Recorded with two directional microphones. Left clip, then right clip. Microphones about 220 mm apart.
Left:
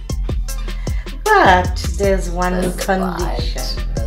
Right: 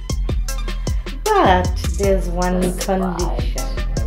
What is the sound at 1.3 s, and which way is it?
Speech, 30° right (ahead or behind).